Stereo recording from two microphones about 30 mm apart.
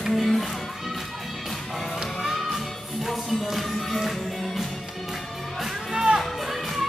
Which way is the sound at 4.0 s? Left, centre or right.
Centre.